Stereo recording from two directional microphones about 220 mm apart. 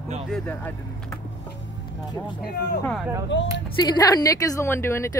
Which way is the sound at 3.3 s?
55° left (ahead or behind).